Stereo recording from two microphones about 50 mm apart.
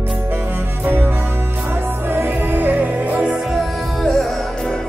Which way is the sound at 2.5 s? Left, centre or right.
Right.